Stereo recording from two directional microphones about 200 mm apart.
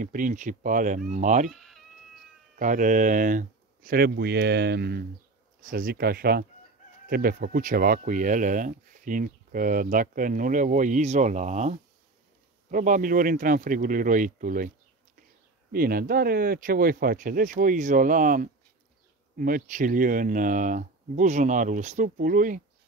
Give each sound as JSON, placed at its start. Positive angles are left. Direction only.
{"t": 0.0, "sound": "speech", "side_deg": -40}
{"t": 1.5, "sound": "a sound", "side_deg": 0}
{"t": 2.5, "sound": "speech", "side_deg": -40}
{"t": 15.7, "sound": "speech", "side_deg": -45}